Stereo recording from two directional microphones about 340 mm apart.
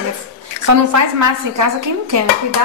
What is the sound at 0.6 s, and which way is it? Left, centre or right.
A woman's voice, right.